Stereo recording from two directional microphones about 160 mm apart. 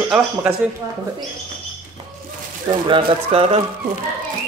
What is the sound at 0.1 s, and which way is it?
Speech, 10° right (ahead or behind).